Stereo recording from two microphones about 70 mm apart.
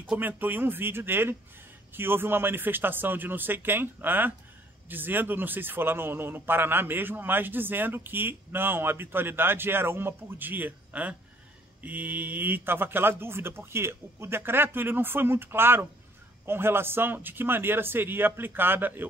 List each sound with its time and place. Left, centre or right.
0.2 s a man's voice: right